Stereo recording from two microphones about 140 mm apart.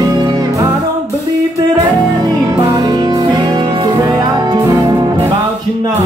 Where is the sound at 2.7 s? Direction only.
30° right (ahead or behind).